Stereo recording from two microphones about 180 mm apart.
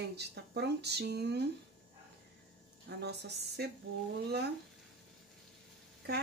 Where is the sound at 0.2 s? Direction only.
65° right (ahead or behind).